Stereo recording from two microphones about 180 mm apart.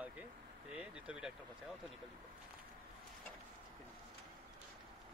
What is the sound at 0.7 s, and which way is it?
Vehicle, 5° right (ahead or behind).